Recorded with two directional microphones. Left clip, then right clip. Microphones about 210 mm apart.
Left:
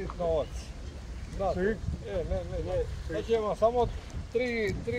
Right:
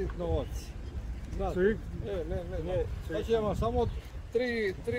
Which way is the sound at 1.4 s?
45° right (ahead or behind).